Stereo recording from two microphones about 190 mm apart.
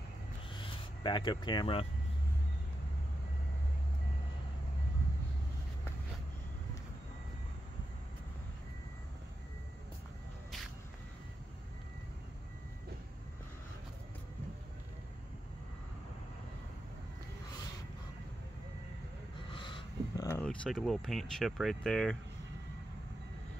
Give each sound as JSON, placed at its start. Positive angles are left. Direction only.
{"t": 0.5, "sound": "vehicle", "side_deg": 25}
{"t": 19.5, "sound": "a sound", "side_deg": 25}
{"t": 20.2, "sound": "speech", "side_deg": 5}